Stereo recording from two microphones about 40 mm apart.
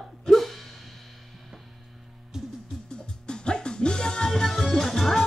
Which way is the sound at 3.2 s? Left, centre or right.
Left.